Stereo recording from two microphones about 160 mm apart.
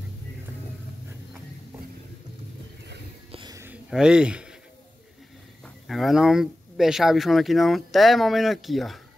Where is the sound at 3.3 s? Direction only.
30° right (ahead or behind).